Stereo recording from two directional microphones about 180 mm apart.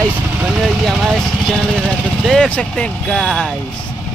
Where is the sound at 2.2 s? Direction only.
5° left (ahead or behind).